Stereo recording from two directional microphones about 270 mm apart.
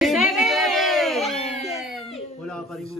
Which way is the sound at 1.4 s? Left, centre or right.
Left.